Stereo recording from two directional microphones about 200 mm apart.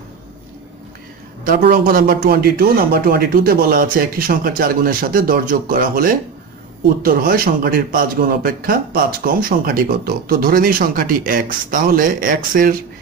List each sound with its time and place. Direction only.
1.4 s speech: 45° right (ahead or behind)